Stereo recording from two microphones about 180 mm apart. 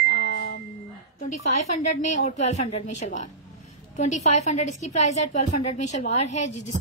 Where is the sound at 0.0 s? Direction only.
55° left (ahead or behind).